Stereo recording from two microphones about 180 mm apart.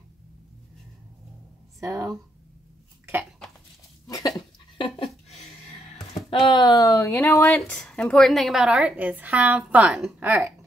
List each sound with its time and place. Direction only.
1.8 s a woman's voice: 15° right (ahead or behind)
4.7 s a sound: 35° left (ahead or behind)
6.1 s a woman's voice: 25° left (ahead or behind); by 10.5 s 10° right (ahead or behind)